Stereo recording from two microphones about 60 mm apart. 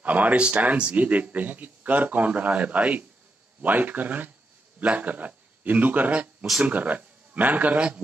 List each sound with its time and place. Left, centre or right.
0.0 s a man's voice: right